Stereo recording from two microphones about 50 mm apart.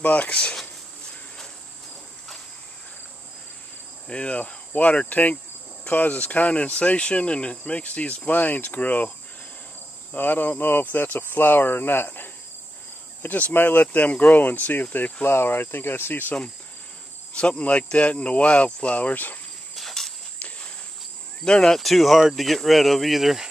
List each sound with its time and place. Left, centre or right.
0.0 s speech: left
4.1 s speech: left
10.1 s speech: left
14.1 s speech: left
14.4 s speech: left
15.2 s speech: left
17.3 s speech: left
19.7 s cricket: centre
20.3 s cricket: left
21.5 s speech: centre